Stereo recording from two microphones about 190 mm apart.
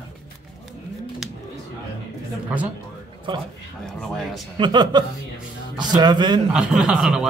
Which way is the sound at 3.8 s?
Centre (ahead or behind).